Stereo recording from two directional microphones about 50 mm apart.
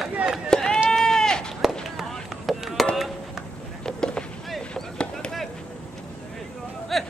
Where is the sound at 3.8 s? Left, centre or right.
Centre.